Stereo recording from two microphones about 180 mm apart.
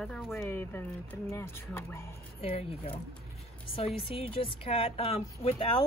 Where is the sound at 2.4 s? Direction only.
35° left (ahead or behind).